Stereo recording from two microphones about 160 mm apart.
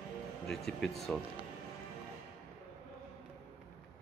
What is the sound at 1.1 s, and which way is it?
Speech, 5° left (ahead or behind).